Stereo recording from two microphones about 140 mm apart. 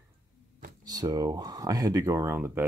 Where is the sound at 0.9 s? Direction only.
25° right (ahead or behind).